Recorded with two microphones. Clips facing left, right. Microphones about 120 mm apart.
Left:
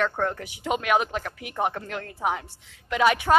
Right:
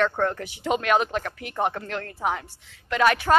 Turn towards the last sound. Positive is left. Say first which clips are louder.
# even
turn(degrees=15)  # may be behind; listen again after turning